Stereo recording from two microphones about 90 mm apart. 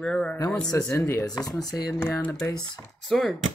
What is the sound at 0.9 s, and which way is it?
Speech, 30° left (ahead or behind).